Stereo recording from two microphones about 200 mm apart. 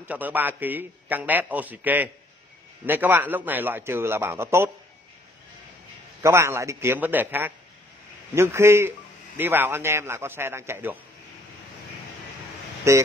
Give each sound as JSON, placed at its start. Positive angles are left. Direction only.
{"t": 0.1, "sound": "a man's voice", "side_deg": -10}
{"t": 6.2, "sound": "a man's voice", "side_deg": -15}
{"t": 12.9, "sound": "a man's voice", "side_deg": -15}